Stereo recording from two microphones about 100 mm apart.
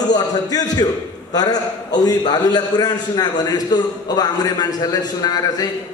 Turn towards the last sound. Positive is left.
turn(degrees=40)  # may be behind; listen again after turning